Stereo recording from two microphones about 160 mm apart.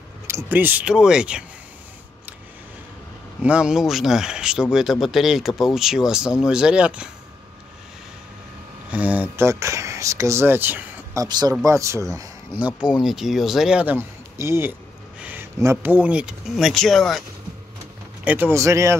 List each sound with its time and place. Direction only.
0.3 s speech: 15° right (ahead or behind)
3.4 s speech: 5° right (ahead or behind)
8.9 s speech: 10° right (ahead or behind)
11.2 s speech: 25° right (ahead or behind)
12.5 s speech: 10° right (ahead or behind)
18.2 s speech: 10° right (ahead or behind)